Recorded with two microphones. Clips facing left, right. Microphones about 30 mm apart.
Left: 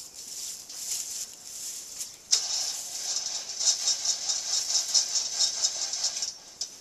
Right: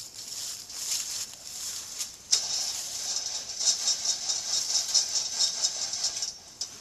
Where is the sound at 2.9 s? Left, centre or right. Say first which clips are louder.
Even; centre.